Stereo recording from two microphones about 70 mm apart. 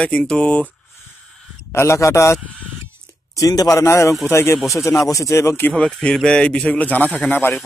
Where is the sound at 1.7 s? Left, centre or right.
Left.